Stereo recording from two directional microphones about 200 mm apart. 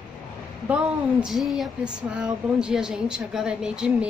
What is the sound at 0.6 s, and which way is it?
Speech, 5° right (ahead or behind).